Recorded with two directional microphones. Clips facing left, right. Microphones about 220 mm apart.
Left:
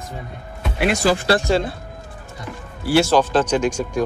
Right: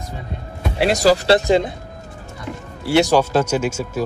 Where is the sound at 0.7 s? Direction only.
35° right (ahead or behind).